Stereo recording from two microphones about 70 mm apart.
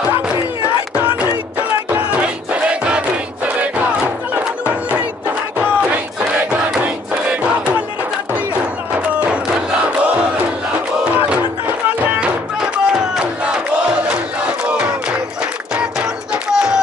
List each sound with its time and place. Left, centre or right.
1.9 s music: right
5.6 s battle cry: right
8.9 s a sound: centre
10.0 s crowd: centre
12.0 s music: right
12.5 s crowd: centre
15.7 s music: centre